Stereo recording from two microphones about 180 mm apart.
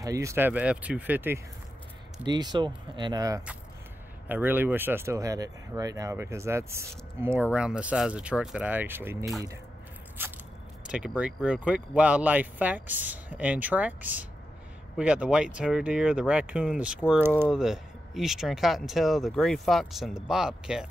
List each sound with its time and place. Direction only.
0.0 s speech: 15° right (ahead or behind)
2.2 s speech: 25° right (ahead or behind); by 20.8 s 5° right (ahead or behind)